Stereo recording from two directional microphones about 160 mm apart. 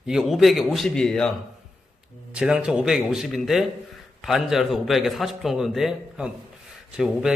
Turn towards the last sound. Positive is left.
turn(degrees=-5)  # may be behind; listen again after turning